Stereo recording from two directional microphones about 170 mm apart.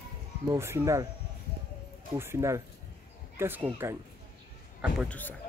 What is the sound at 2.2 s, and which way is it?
Speech, 15° right (ahead or behind).